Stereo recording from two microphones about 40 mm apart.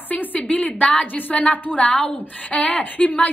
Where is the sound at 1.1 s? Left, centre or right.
Left.